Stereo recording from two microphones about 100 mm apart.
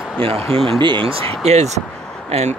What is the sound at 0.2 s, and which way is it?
Speech, 70° right (ahead or behind).